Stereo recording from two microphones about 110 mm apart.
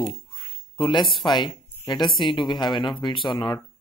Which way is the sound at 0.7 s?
50° left (ahead or behind).